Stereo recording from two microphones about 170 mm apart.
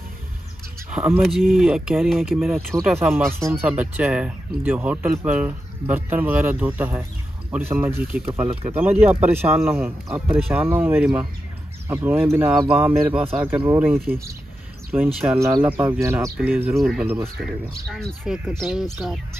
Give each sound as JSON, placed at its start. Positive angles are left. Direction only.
{"t": 0.8, "sound": "speech", "side_deg": -10}
{"t": 3.0, "sound": "speech", "side_deg": -15}
{"t": 15.3, "sound": "speech", "side_deg": -15}
{"t": 17.9, "sound": "speech", "side_deg": 0}